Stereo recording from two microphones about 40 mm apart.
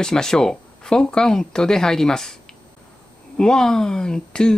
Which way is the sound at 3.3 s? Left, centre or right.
Centre.